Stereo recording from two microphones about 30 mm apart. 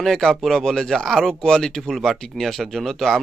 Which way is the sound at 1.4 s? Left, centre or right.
Left.